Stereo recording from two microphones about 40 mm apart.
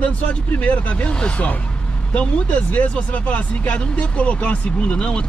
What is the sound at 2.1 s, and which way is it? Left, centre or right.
Speech, left.